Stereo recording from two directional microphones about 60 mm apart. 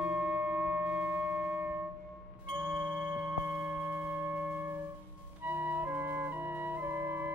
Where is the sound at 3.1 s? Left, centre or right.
Right.